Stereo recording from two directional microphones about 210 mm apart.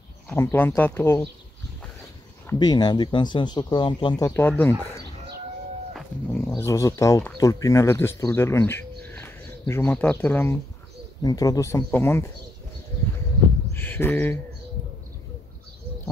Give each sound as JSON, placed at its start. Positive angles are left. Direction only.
{"t": 0.3, "sound": "speech", "side_deg": 10}
{"t": 2.4, "sound": "speech", "side_deg": 20}
{"t": 5.9, "sound": "speech", "side_deg": 5}
{"t": 13.7, "sound": "speech", "side_deg": 10}